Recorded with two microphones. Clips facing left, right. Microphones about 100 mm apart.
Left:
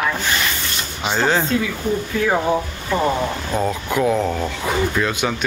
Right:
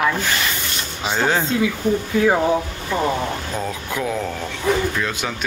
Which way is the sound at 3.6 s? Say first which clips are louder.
Left 9 dB; 5° left (ahead or behind).